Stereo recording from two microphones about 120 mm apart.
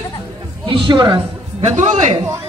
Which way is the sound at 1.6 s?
70° right (ahead or behind).